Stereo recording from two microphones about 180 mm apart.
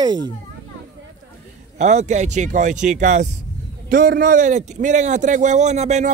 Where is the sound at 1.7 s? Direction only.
40° right (ahead or behind).